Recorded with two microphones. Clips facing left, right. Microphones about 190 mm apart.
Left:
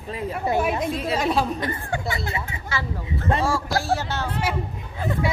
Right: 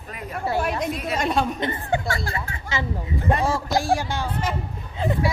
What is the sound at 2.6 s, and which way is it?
Speech, 20° right (ahead or behind).